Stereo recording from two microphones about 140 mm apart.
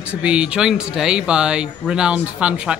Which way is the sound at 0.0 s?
10° right (ahead or behind).